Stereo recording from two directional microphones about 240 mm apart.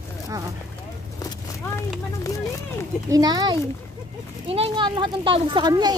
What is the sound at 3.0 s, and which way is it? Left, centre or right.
Speech, centre.